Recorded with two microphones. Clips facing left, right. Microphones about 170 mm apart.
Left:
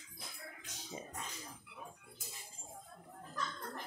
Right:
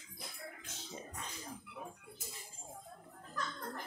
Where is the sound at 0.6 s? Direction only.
15° left (ahead or behind).